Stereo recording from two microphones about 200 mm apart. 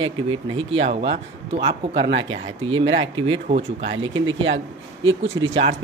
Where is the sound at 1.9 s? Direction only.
65° right (ahead or behind).